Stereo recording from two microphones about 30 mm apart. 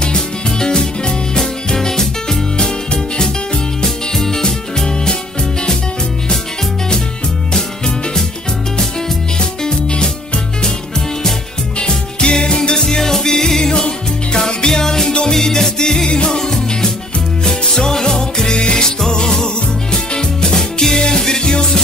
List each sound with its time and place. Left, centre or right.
0.0 s music: left
4.1 s music: centre
9.6 s music: left
11.8 s music: left